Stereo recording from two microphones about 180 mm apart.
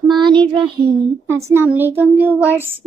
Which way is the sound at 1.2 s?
15° right (ahead or behind).